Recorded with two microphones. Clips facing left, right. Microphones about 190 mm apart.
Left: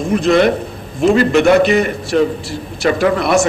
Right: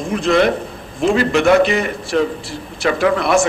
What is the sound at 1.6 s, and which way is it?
A man's voice, 40° left (ahead or behind).